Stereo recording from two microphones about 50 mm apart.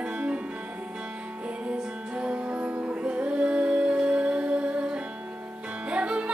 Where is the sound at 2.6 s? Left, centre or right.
Right.